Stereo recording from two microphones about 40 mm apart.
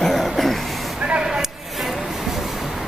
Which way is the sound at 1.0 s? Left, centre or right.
Right.